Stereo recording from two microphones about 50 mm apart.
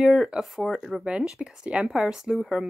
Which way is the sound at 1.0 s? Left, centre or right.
Right.